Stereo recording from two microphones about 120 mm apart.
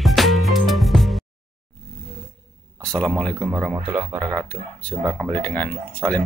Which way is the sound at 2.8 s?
5° left (ahead or behind).